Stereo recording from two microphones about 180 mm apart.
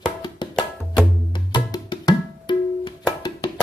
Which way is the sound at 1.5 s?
25° left (ahead or behind).